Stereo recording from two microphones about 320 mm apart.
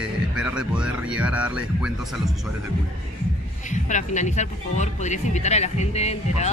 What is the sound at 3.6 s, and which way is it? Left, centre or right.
Speech, left.